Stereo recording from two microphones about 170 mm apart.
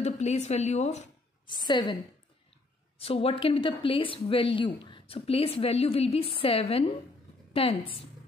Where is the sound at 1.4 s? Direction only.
25° left (ahead or behind).